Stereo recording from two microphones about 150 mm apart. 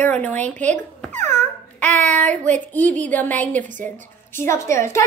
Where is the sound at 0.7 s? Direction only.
50° right (ahead or behind).